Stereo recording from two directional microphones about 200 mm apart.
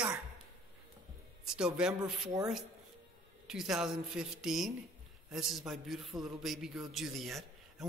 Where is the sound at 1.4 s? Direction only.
5° right (ahead or behind).